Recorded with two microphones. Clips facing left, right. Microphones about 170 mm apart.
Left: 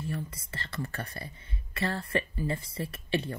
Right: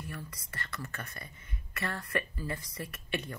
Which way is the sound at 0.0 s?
25° left (ahead or behind).